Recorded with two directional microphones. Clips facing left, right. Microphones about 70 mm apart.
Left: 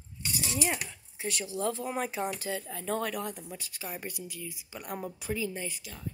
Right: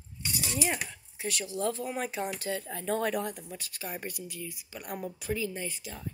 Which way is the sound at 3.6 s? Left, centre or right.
Centre.